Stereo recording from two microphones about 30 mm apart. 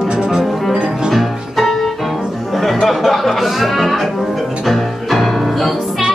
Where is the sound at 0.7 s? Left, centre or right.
Right.